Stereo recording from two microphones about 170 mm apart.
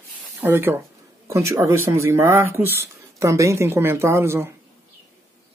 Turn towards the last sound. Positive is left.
turn(degrees=-15)  # may be behind; listen again after turning